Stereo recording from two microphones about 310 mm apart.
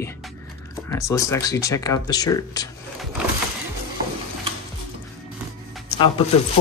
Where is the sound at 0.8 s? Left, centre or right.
Centre.